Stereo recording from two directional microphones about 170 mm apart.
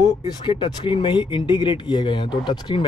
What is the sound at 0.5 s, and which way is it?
Speech, 30° left (ahead or behind).